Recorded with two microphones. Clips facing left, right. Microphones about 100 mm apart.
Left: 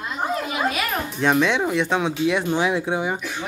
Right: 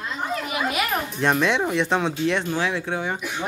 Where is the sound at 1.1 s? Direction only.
Centre (ahead or behind).